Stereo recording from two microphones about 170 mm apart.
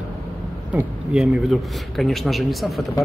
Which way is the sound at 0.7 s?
5° right (ahead or behind).